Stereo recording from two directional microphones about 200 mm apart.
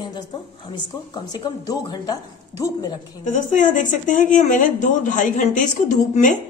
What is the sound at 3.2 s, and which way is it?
Speech, 40° left (ahead or behind).